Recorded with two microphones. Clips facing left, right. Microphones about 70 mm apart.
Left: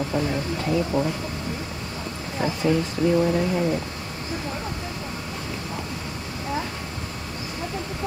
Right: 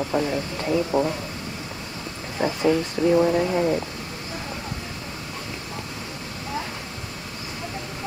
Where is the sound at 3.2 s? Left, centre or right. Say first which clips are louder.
Right 2 dB; centre.